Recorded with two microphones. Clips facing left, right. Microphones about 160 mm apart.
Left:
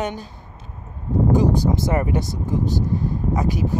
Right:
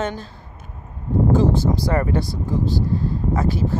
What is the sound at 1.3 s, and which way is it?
Speech, 20° left (ahead or behind).